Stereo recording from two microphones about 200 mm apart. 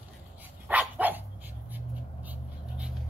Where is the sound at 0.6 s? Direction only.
10° right (ahead or behind).